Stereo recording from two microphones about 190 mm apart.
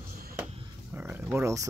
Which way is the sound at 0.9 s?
10° right (ahead or behind).